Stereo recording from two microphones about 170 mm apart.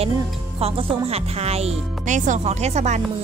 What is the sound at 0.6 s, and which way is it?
Speech, 35° right (ahead or behind).